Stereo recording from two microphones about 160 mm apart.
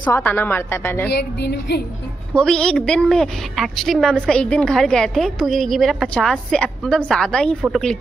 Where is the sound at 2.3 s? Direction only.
5° left (ahead or behind).